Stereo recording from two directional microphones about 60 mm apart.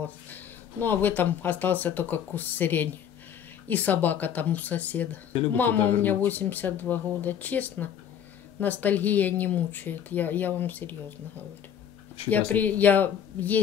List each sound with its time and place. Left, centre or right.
0.0 s speech: left
12.3 s speech: left